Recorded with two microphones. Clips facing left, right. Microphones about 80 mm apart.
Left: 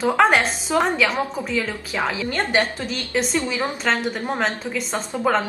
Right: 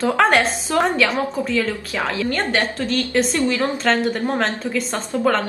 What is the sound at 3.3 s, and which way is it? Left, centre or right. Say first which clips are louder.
Speech: right 3 dB; centre.